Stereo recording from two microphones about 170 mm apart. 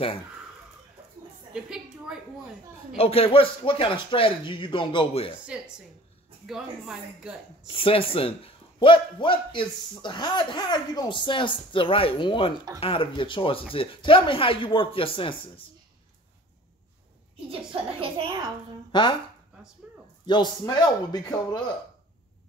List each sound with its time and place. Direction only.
1.5 s a sound: 5° right (ahead or behind)
3.0 s speech: 35° left (ahead or behind)
5.5 s a woman's voice: 5° right (ahead or behind)
7.6 s speech: 35° left (ahead or behind)
18.0 s a child's voice: 30° right (ahead or behind)
18.9 s speech: 25° left (ahead or behind)
20.2 s speech: 25° left (ahead or behind)